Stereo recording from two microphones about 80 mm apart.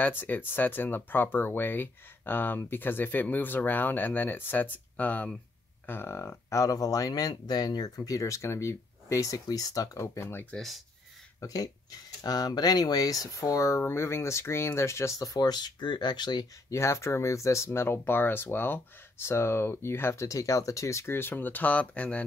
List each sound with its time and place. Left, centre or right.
0.2 s speech: left
5.9 s speech: left
10.5 s speech: centre
11.4 s speech: left
16.7 s speech: left
17.6 s speech: left